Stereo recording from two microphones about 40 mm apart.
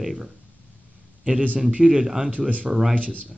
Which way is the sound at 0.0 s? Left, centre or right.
Centre.